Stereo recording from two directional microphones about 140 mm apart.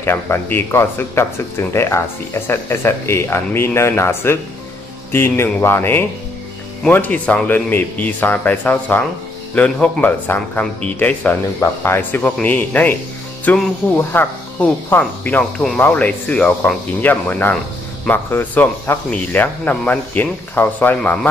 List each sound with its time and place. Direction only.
0.0 s speech: 15° left (ahead or behind)